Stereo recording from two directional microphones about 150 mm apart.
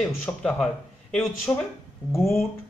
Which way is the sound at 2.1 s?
15° left (ahead or behind).